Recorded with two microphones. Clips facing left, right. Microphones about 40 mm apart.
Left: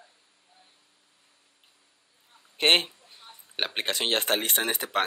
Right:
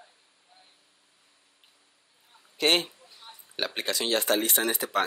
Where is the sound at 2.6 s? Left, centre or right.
Left.